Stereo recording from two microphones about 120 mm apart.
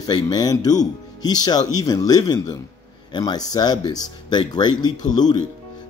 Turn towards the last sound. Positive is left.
turn(degrees=35)  # may be behind; listen again after turning